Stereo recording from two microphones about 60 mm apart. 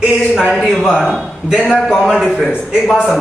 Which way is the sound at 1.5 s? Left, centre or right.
Centre.